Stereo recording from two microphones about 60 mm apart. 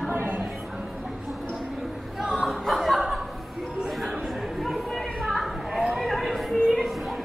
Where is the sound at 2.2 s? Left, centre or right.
Centre.